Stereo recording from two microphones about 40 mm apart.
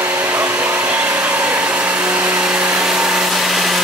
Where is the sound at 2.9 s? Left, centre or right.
Centre.